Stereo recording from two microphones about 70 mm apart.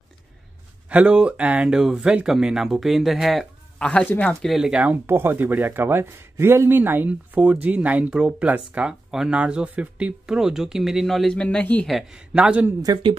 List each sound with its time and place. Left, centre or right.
0.8 s speech: centre
3.8 s speech: left
4.6 s speech: centre
5.0 s speech: right; by 11.4 s centre
11.4 s speech: left
12.4 s speech: centre
12.9 s speech: right